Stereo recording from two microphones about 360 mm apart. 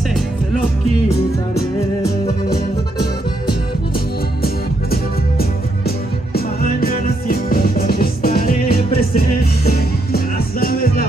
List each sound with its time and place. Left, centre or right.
2.2 s music: left
4.9 s music: left